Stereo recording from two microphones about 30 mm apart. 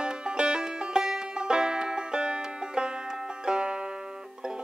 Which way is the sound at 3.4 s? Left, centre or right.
Right.